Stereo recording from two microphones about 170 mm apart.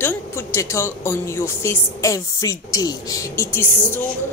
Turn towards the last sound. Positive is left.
turn(degrees=15)  # may be behind; listen again after turning